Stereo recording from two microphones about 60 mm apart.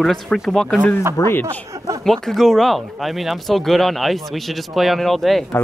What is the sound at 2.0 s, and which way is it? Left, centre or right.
Speech, centre.